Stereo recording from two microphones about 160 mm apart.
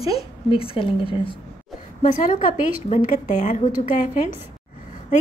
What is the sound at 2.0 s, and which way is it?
A woman's voice, 55° left (ahead or behind).